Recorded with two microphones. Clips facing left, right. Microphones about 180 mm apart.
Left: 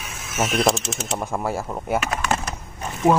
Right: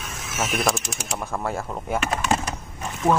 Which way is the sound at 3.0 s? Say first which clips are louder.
Left 3 dB; 15° left (ahead or behind).